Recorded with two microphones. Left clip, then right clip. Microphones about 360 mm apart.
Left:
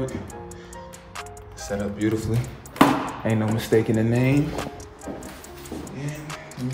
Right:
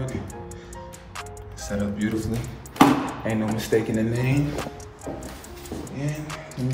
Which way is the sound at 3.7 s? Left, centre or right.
Left.